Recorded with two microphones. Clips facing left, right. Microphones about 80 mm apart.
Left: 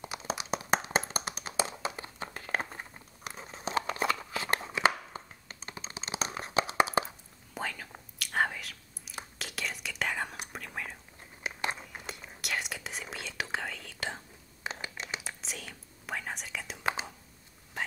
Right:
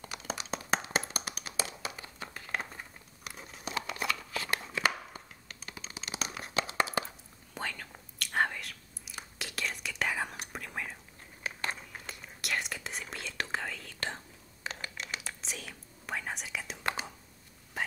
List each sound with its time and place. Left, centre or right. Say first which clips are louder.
0.0 s clapping: left 3 dB; centre
2.3 s crumpling: left 3 dB; left
4.0 s shuffling cards: left 3 dB; left
4.6 s computer keyboard: left 4 dB; centre
7.5 s whispering: left 2 dB; centre
11.4 s a sound: left 2 dB; centre
12.4 s whispering: right 1 dB; centre
14.6 s scratch: left 1 dB; centre
15.4 s whispering: even; centre